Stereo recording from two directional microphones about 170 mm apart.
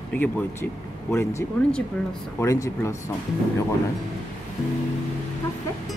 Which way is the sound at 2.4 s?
20° left (ahead or behind).